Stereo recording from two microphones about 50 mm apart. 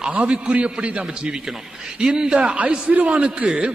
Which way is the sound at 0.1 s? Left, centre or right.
Right.